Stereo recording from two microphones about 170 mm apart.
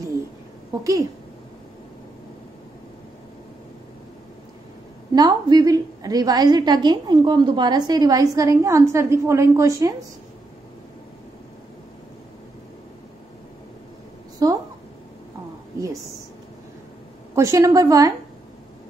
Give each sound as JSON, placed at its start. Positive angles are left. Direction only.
{"t": 5.1, "sound": "a woman's voice", "side_deg": -25}
{"t": 14.4, "sound": "a woman's voice", "side_deg": -20}
{"t": 17.4, "sound": "a woman's voice", "side_deg": -20}